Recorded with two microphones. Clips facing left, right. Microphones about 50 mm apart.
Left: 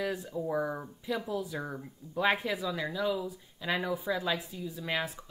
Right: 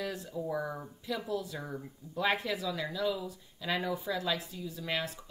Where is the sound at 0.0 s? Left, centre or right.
Centre.